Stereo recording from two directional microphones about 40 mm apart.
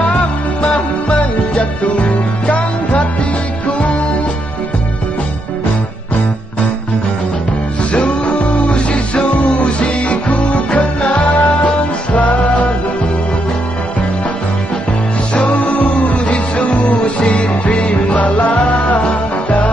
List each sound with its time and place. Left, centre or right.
0.0 s music: left
7.9 s music: left
15.3 s music: left